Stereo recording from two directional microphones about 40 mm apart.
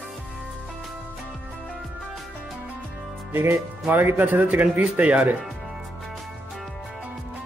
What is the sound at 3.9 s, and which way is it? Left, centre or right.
Speech, right.